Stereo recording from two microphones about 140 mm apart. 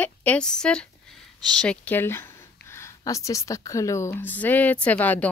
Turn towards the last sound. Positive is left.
turn(degrees=10)  # may be behind; listen again after turning